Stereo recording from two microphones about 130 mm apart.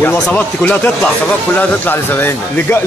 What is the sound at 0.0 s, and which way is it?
Speech, 10° left (ahead or behind).